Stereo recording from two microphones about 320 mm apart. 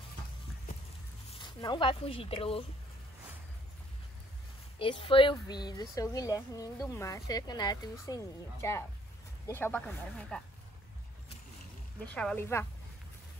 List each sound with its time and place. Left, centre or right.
1.3 s speech: centre
4.7 s speech: centre
12.0 s speech: centre